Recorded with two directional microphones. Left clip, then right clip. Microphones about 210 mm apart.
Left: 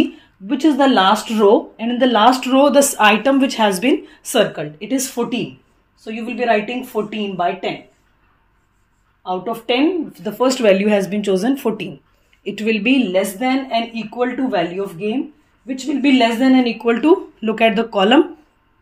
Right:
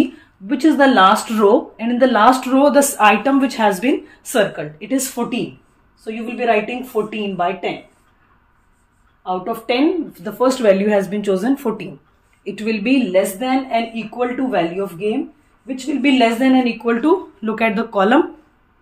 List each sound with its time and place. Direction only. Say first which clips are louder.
0.5 s speech: right 1 dB; 15° left (ahead or behind)
9.2 s speech: even; 20° left (ahead or behind)
13.4 s speech: even; 20° left (ahead or behind)